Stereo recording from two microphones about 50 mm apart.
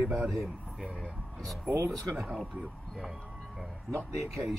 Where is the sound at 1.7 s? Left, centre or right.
Right.